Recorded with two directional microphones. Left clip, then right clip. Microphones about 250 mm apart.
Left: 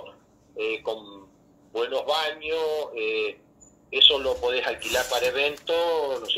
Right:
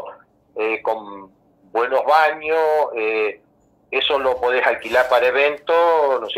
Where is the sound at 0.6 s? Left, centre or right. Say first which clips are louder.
Right 7 dB; right.